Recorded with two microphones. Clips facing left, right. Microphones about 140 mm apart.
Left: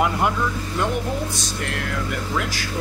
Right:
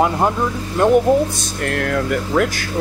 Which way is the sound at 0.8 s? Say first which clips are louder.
Right 10 dB; 45° right (ahead or behind).